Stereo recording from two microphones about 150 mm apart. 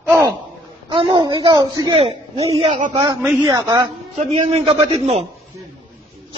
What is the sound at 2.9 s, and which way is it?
A man's voice, 30° right (ahead or behind).